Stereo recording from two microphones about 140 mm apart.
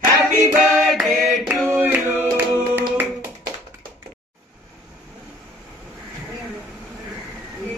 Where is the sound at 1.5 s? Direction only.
15° right (ahead or behind).